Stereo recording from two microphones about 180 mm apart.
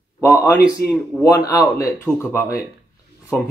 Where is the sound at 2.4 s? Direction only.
15° left (ahead or behind).